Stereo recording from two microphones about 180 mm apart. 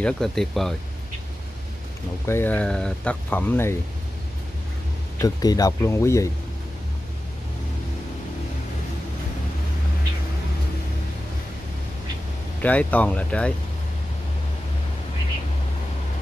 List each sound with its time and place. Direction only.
0.0 s speech: centre (ahead or behind)
2.2 s speech: 10° left (ahead or behind)
5.2 s speech: 20° left (ahead or behind)
12.6 s speech: 10° left (ahead or behind)